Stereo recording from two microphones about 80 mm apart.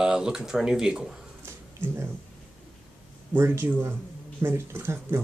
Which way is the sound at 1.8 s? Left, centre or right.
Right.